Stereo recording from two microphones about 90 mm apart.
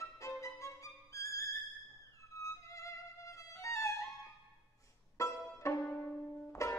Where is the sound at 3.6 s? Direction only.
35° left (ahead or behind).